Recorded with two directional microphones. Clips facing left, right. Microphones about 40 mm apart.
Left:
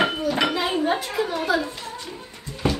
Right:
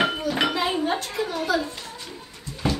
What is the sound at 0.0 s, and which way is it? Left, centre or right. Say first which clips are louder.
Dishes: left 1 dB; centre.